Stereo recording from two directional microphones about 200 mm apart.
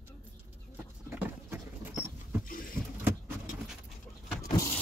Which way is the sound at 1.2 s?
10° right (ahead or behind).